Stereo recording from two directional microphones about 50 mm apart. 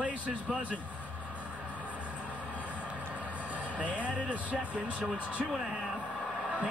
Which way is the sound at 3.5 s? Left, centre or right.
Right.